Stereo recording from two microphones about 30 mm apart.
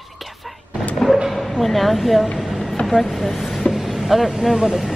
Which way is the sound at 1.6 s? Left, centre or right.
Centre.